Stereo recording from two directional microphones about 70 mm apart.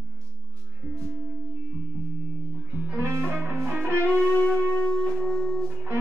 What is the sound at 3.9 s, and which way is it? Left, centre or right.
Music, right.